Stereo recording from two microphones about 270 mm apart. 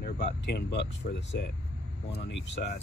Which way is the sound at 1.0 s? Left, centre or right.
Left.